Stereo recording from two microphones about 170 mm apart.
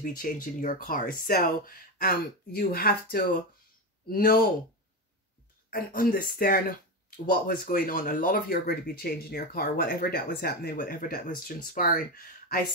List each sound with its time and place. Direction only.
0.0 s speech: 55° left (ahead or behind)
5.7 s speech: 55° left (ahead or behind)